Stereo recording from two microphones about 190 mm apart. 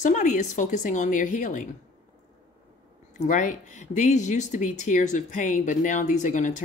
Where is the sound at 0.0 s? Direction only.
40° left (ahead or behind).